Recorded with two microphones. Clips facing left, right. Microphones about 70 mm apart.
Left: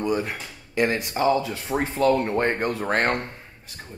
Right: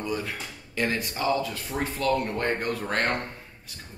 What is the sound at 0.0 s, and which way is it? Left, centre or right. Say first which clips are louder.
Speech: left 6 dB; left.